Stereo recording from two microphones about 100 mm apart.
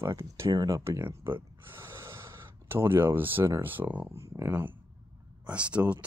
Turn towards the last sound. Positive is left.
turn(degrees=-10)  # may be behind; listen again after turning